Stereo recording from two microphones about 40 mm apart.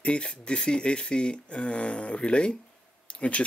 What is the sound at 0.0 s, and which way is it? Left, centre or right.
Speech, left.